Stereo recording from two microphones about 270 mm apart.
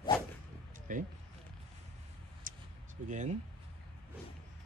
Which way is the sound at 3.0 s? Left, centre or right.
Right.